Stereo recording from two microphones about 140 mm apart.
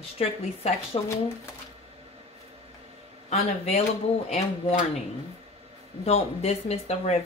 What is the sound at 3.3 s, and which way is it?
Speech, 45° left (ahead or behind).